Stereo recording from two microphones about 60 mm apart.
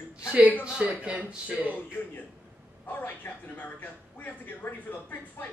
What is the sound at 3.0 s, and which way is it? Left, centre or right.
Speech, left.